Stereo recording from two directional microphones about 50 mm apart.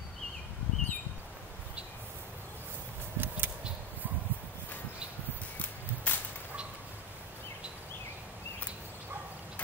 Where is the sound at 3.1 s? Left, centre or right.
Right.